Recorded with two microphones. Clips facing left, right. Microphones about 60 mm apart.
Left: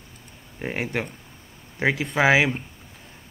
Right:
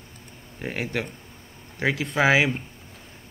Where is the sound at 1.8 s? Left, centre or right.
Centre.